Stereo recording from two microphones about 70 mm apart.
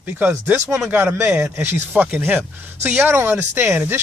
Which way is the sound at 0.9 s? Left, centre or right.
Right.